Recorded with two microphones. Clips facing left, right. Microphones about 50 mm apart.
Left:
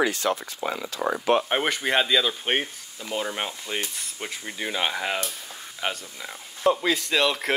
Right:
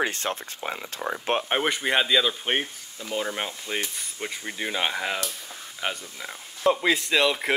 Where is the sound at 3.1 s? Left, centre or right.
Centre.